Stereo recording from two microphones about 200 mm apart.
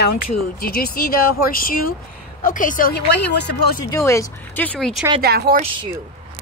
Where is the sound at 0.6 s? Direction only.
50° left (ahead or behind).